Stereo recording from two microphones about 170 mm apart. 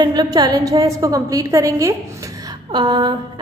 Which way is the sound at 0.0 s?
25° right (ahead or behind).